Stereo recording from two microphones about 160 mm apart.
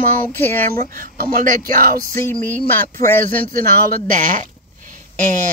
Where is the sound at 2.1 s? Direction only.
15° left (ahead or behind).